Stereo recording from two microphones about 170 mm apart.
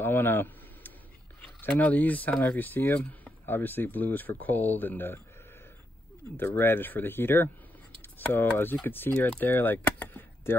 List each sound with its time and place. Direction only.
0.0 s a sound: 10° left (ahead or behind)
1.4 s speech: 10° left (ahead or behind)
6.3 s speech: 10° left (ahead or behind)